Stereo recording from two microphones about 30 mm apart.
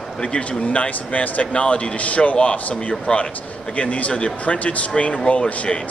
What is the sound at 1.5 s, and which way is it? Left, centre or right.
Speech, left.